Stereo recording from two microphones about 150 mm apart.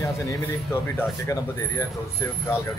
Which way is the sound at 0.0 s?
15° left (ahead or behind).